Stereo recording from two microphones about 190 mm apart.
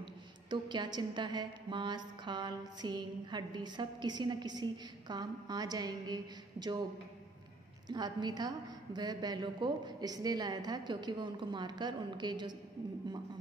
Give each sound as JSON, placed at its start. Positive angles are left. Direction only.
{"t": 0.0, "sound": "a woman's voice", "side_deg": -25}
{"t": 7.9, "sound": "a woman's voice", "side_deg": -20}